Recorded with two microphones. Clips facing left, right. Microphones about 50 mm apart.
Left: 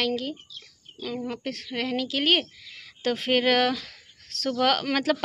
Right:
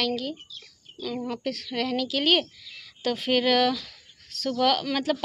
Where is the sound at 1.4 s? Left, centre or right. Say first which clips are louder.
Right 1 dB; left.